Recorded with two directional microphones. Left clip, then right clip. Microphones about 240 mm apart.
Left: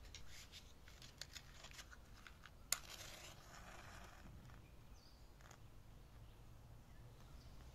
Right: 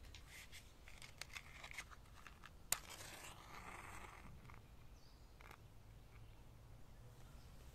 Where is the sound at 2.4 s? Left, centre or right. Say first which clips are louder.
Even; right.